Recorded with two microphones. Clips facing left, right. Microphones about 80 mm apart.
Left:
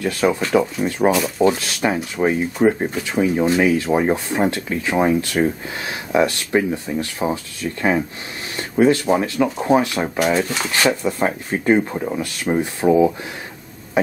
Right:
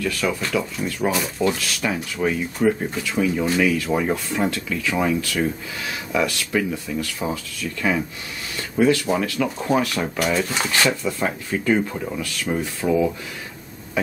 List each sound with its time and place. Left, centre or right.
0.0 s speech: left
10.5 s speech: centre
10.9 s speech: left